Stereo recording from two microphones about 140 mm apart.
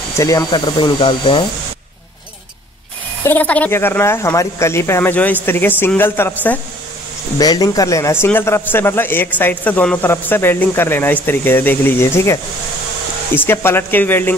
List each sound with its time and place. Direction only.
0.2 s speech: 25° left (ahead or behind)
3.3 s a man's voice: 10° left (ahead or behind)
7.3 s a man's voice: 30° left (ahead or behind)